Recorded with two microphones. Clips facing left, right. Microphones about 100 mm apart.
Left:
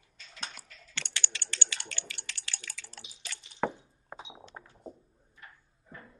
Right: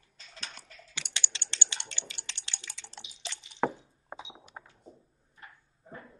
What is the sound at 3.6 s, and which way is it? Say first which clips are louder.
Squish: right 2 dB; 5° right (ahead or behind).